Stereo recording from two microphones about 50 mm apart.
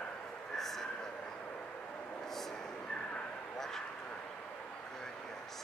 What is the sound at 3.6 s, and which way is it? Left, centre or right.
Vehicle, centre.